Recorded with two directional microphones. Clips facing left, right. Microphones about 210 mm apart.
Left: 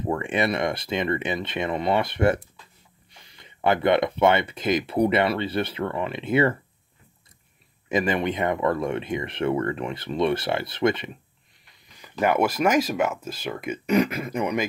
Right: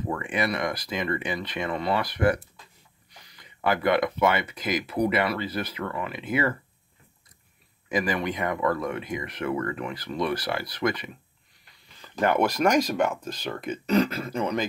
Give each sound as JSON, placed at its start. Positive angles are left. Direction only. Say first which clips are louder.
{"t": 0.1, "sound": "speech", "louder": "left 4 dB", "side_deg": 25}
{"t": 7.9, "sound": "speech", "louder": "left 3 dB", "side_deg": 25}
{"t": 12.0, "sound": "speech", "louder": "left 1 dB", "side_deg": 10}